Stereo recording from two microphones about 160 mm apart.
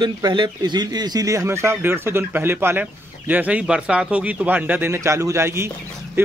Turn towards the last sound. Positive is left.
turn(degrees=-15)  # may be behind; listen again after turning